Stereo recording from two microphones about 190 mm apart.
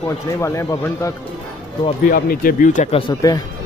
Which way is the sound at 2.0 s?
50° left (ahead or behind).